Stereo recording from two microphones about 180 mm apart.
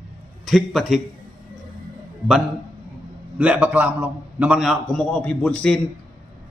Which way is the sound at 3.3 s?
10° right (ahead or behind).